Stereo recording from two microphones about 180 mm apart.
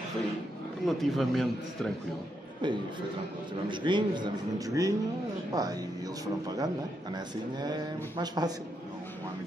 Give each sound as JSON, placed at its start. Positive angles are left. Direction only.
{"t": 0.8, "sound": "a man's voice", "side_deg": 0}
{"t": 2.6, "sound": "speech", "side_deg": -25}